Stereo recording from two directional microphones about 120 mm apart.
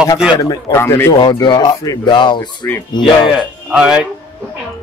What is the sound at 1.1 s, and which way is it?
Speech, 40° left (ahead or behind).